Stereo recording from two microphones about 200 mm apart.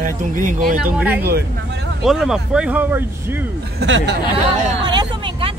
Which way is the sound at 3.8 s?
60° right (ahead or behind).